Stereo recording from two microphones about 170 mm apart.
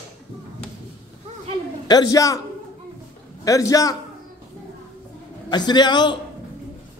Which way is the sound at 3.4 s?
20° left (ahead or behind).